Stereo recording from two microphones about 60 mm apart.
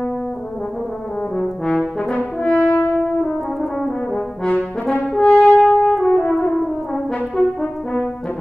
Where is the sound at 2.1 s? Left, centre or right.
Left.